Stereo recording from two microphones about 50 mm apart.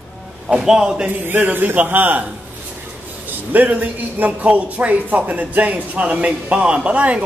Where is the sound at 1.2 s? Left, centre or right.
Right.